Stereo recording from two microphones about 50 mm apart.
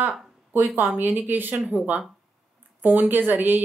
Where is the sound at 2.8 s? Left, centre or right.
Right.